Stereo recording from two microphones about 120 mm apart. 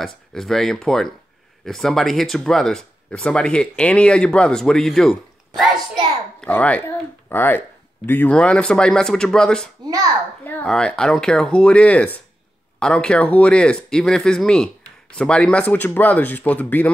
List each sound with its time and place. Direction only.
0.0 s speech: 5° left (ahead or behind)
6.4 s speech: 10° left (ahead or behind)
10.4 s a sound: 15° left (ahead or behind)
10.7 s speech: 5° left (ahead or behind)